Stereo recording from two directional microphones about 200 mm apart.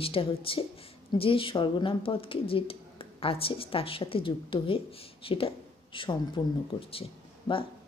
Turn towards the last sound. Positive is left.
turn(degrees=25)  # may be behind; listen again after turning